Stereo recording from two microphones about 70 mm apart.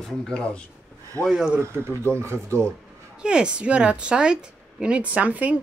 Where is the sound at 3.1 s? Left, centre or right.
Centre.